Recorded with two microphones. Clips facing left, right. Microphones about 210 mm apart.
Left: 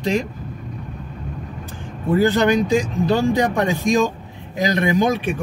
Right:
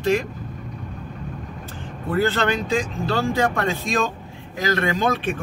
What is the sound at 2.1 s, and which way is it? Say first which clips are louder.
Speech: left 5 dB; 15° left (ahead or behind).